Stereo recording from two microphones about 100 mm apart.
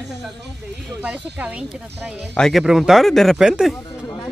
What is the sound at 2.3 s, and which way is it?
Speech, 5° left (ahead or behind).